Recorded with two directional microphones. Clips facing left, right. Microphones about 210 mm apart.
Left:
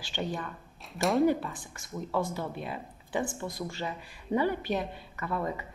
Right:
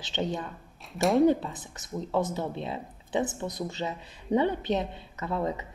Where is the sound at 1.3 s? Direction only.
20° right (ahead or behind).